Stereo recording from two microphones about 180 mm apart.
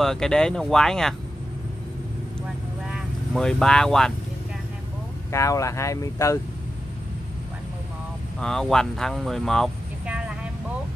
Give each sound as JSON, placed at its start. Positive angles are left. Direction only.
{"t": 0.0, "sound": "speech", "side_deg": 0}
{"t": 2.9, "sound": "speech", "side_deg": 0}
{"t": 5.3, "sound": "speech", "side_deg": 15}
{"t": 8.4, "sound": "speech", "side_deg": 5}